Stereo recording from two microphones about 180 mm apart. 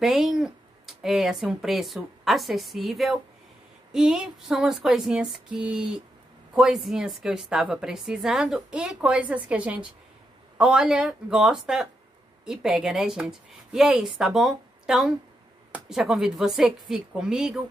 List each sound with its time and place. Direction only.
0.0 s a woman's voice: centre (ahead or behind)